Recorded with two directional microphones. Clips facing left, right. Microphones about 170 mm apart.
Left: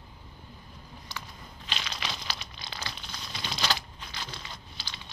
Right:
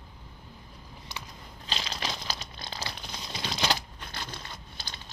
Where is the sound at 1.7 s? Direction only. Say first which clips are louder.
Right 2 dB; 35° right (ahead or behind).